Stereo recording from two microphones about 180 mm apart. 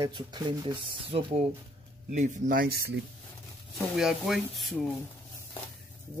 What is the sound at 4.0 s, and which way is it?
Speech, centre (ahead or behind).